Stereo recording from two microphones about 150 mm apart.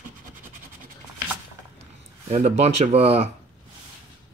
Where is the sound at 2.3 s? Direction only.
45° right (ahead or behind).